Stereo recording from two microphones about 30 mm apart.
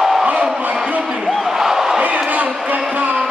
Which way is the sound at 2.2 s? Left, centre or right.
Right.